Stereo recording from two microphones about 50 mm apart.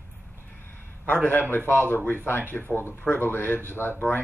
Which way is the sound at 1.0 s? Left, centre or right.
Left.